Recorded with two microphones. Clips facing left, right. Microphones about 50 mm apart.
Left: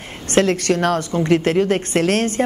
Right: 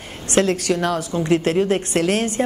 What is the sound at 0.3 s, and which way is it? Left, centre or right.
A woman's voice, left.